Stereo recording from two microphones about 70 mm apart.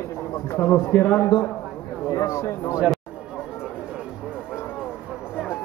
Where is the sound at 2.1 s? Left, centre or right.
Left.